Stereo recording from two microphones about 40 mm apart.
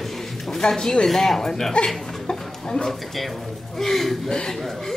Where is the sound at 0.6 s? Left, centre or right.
Centre.